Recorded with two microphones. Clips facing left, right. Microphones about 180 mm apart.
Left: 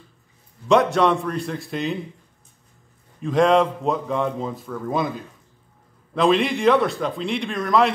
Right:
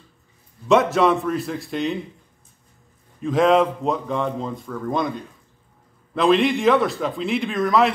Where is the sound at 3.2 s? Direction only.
Centre (ahead or behind).